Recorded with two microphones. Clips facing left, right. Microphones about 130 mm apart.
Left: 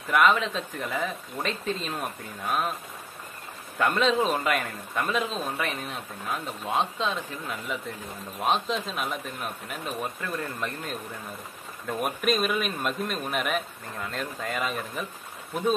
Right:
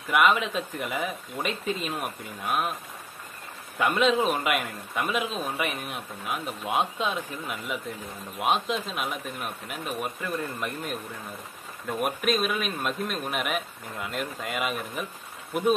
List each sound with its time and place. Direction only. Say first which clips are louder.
0.1 s speech: even; 5° right (ahead or behind)
3.7 s a man's voice: right 1 dB; 5° right (ahead or behind)
12.0 s speech: even; centre (ahead or behind)